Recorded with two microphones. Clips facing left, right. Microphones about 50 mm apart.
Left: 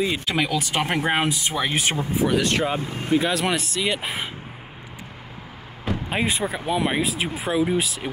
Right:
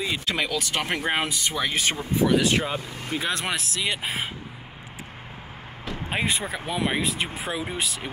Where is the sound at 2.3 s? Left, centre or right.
Centre.